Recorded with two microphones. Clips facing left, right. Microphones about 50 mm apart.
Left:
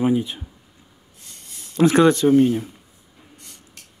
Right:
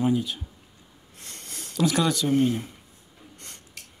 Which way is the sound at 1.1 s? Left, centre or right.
Right.